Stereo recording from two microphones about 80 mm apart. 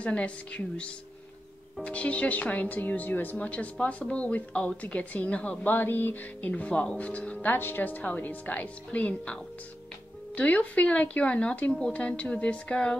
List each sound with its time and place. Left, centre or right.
0.0 s speech: centre